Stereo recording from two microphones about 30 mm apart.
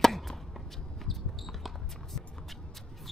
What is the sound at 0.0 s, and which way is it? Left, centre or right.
Chop, centre.